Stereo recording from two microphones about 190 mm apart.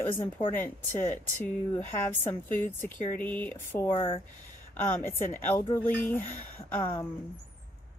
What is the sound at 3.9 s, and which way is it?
Speech, 30° left (ahead or behind).